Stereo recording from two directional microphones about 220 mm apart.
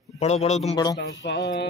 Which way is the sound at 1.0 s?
50° left (ahead or behind).